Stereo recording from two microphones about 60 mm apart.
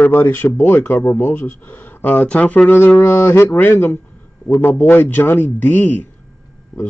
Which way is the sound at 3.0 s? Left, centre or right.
Left.